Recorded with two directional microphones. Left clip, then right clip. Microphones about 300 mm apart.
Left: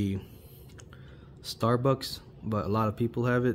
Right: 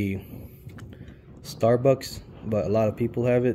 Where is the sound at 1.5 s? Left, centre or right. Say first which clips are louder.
Right 7 dB; centre.